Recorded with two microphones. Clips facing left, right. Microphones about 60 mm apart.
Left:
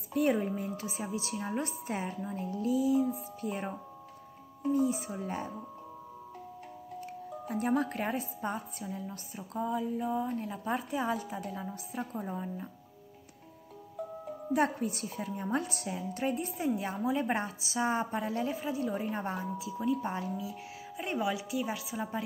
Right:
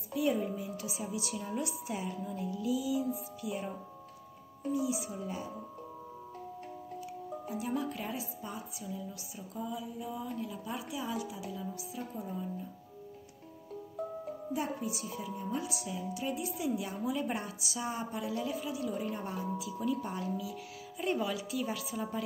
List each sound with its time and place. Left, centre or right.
0.1 s a woman's voice: left
4.7 s a woman's voice: left
7.4 s a woman's voice: left
14.5 s a woman's voice: left
15.3 s a woman's voice: left